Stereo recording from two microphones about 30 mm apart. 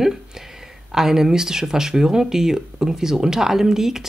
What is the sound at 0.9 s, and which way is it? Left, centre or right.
Speech, centre.